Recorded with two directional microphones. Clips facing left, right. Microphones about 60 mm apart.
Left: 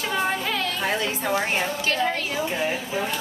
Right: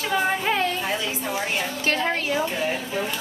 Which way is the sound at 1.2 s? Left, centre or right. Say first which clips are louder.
Left 4 dB; left.